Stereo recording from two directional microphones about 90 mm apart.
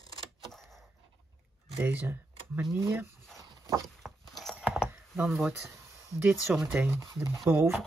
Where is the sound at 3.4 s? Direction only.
40° right (ahead or behind).